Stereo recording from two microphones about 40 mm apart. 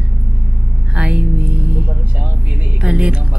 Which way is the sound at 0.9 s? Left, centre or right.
Right.